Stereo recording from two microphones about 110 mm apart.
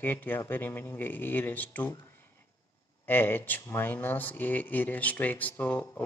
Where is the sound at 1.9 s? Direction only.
20° left (ahead or behind).